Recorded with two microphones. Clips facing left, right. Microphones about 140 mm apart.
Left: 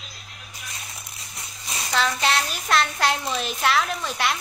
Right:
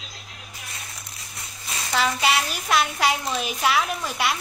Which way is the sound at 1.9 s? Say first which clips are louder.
Right 1 dB; 5° right (ahead or behind).